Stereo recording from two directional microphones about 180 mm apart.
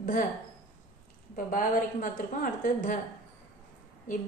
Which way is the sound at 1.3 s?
50° left (ahead or behind).